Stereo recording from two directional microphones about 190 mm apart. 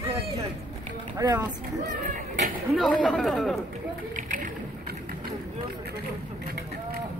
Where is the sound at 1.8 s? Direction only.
45° right (ahead or behind).